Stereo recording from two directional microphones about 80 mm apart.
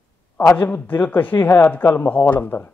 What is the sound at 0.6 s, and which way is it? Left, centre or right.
Speech, centre.